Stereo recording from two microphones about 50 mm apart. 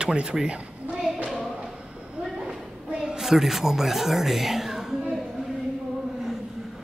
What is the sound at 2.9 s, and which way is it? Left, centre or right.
A woman's voice, centre.